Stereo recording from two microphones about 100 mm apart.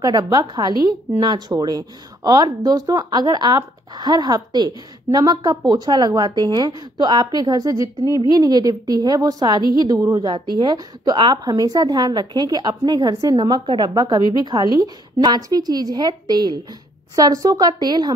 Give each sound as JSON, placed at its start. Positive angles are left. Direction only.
{"t": 0.0, "sound": "a woman's voice", "side_deg": -40}
{"t": 10.3, "sound": "a woman's voice", "side_deg": -50}